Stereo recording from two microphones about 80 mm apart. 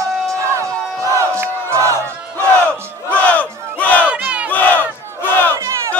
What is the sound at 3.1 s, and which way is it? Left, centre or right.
Battle cry, centre.